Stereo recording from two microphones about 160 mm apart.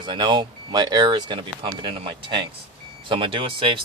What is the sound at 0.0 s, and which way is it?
Speech, 30° right (ahead or behind).